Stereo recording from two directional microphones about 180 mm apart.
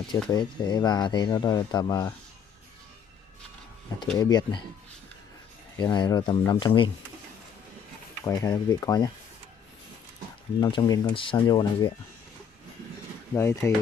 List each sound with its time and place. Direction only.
0.3 s speech: 25° left (ahead or behind)
4.2 s speech: 25° left (ahead or behind)
5.8 s speech: 25° left (ahead or behind)
8.2 s speech: 20° left (ahead or behind)
10.6 s speech: 20° left (ahead or behind)
13.3 s speech: 15° left (ahead or behind)